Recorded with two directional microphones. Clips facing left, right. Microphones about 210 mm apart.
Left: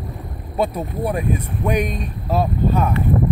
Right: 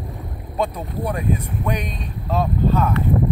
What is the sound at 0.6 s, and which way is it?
Speech, 10° left (ahead or behind).